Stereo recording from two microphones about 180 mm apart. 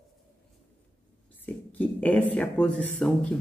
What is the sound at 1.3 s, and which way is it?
Speech, 10° left (ahead or behind).